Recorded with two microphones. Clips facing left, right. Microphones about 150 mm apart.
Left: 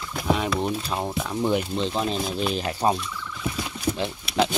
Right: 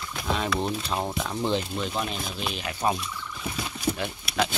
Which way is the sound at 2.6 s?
35° left (ahead or behind).